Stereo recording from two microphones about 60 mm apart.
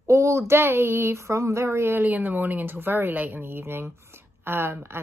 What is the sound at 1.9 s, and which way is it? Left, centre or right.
Speech, right.